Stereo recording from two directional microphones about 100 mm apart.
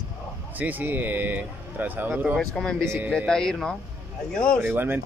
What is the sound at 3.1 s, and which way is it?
Speech, 5° left (ahead or behind).